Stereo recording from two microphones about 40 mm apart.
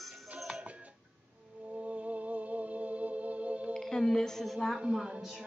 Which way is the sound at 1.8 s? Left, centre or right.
Right.